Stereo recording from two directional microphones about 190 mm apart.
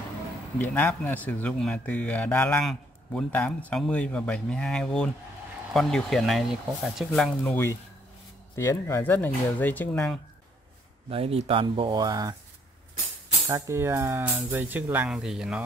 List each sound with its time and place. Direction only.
0.6 s speech: 10° left (ahead or behind)
11.1 s speech: 30° right (ahead or behind)
13.5 s speech: 15° right (ahead or behind)